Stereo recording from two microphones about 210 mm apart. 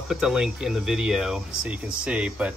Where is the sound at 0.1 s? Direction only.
Centre (ahead or behind).